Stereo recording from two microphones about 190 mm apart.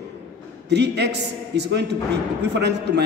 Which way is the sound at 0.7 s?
65° right (ahead or behind).